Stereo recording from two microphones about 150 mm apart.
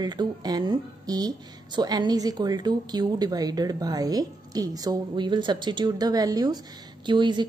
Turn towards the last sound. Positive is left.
turn(degrees=-30)  # may be behind; listen again after turning